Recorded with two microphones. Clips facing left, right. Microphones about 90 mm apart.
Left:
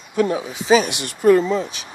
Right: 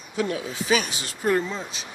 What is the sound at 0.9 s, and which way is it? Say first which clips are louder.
Speech: left 10 dB; 65° left (ahead or behind).